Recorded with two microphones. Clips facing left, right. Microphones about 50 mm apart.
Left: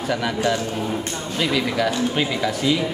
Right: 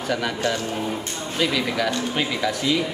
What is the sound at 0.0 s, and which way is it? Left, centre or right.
A man's voice, centre.